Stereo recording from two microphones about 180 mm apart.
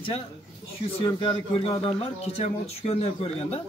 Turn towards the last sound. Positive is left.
turn(degrees=35)  # may be behind; listen again after turning